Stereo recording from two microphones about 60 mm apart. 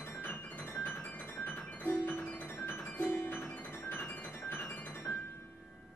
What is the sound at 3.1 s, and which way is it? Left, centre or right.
Music, left.